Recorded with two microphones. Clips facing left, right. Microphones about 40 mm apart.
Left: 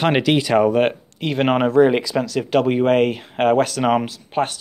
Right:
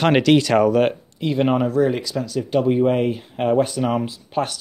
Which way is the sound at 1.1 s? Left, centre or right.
Left.